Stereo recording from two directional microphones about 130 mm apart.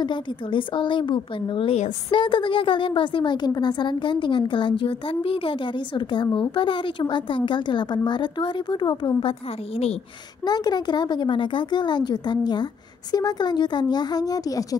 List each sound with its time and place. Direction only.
0.0 s a woman's voice: 40° left (ahead or behind)
10.4 s a woman's voice: 30° left (ahead or behind)